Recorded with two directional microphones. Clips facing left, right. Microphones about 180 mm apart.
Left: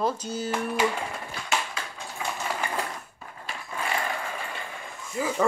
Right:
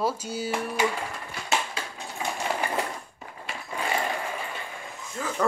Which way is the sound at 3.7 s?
20° right (ahead or behind).